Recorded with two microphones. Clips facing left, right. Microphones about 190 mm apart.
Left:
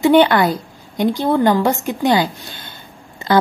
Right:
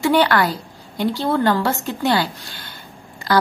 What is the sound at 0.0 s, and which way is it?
A woman's voice, 20° left (ahead or behind).